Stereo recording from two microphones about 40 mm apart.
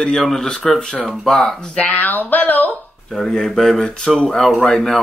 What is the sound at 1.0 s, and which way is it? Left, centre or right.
Speech, centre.